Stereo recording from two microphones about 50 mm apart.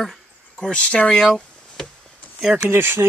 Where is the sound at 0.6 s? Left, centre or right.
Left.